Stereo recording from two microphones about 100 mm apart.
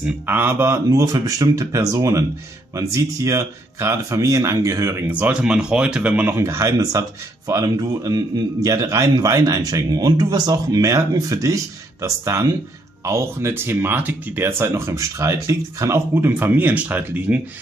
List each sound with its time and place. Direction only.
0.3 s speech: 20° right (ahead or behind)
0.8 s speech: 35° right (ahead or behind)
5.1 s speech: 15° right (ahead or behind)